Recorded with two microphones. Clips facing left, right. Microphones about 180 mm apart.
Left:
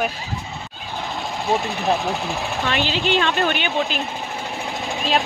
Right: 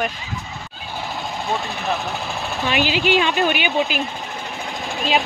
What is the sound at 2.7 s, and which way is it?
Speech, 10° right (ahead or behind).